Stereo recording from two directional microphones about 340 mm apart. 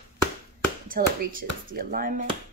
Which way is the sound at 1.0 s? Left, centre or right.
Right.